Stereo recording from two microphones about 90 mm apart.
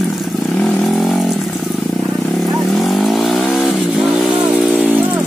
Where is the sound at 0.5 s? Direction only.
5° left (ahead or behind).